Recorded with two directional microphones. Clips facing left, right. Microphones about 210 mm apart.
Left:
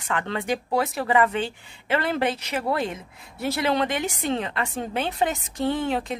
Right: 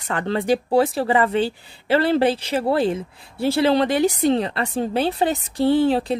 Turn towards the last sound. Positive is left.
turn(degrees=-35)  # may be behind; listen again after turning